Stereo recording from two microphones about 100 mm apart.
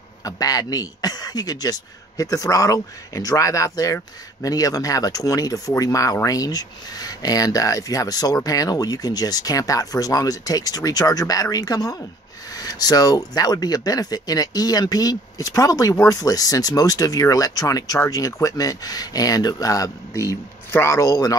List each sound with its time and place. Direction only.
0.2 s speech: 35° left (ahead or behind)